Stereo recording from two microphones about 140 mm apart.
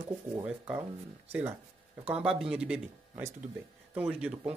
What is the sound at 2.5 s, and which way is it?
Speech, 10° right (ahead or behind).